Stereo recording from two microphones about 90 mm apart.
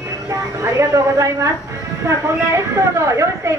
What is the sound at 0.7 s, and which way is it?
Speech, 35° right (ahead or behind).